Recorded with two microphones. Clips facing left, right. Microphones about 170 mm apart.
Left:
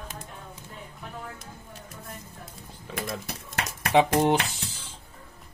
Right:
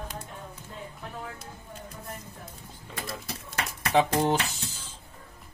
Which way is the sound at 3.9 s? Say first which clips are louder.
Left 3 dB; 20° left (ahead or behind).